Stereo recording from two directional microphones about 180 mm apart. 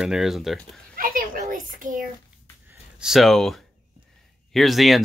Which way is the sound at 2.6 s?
5° right (ahead or behind).